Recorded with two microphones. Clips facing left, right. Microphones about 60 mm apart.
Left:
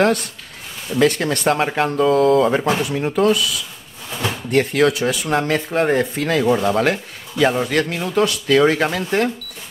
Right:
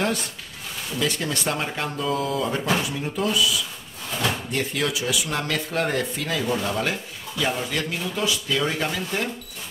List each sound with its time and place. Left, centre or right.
0.9 s speech: left
2.1 s speech: left
4.5 s speech: left
5.4 s speech: left
6.2 s speech: left